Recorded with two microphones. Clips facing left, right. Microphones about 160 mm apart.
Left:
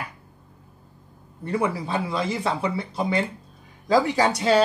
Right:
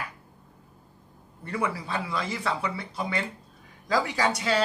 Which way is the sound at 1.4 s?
25° left (ahead or behind).